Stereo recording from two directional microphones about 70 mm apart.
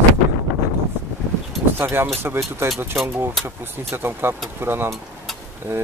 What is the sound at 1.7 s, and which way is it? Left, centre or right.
Speech, right.